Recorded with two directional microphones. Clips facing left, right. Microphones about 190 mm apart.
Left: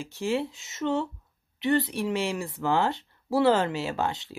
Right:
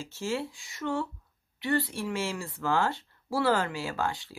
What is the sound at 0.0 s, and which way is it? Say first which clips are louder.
Speech: left 4 dB; 15° left (ahead or behind).